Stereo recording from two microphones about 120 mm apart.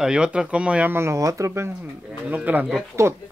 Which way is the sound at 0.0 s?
5° right (ahead or behind).